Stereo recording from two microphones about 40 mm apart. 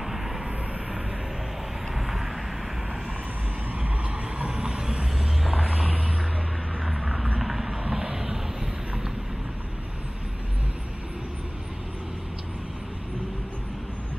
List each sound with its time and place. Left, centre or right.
0.0 s vehicle: centre
2.0 s vehicle: centre
4.5 s vehicle: centre
6.9 s vehicle: centre